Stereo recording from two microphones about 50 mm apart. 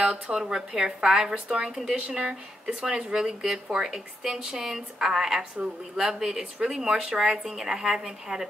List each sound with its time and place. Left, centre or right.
0.0 s speech: centre